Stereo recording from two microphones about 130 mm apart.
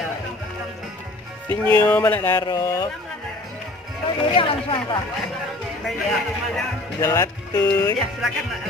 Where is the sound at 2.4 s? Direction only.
30° left (ahead or behind).